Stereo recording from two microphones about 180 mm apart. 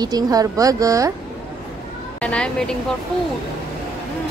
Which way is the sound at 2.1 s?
5° left (ahead or behind).